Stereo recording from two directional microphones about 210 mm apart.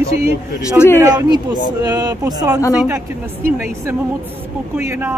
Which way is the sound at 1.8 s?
20° right (ahead or behind).